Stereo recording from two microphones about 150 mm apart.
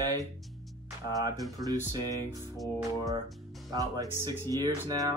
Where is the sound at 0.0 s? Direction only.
25° right (ahead or behind).